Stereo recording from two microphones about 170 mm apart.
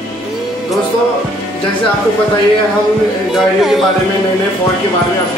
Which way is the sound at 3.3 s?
Centre (ahead or behind).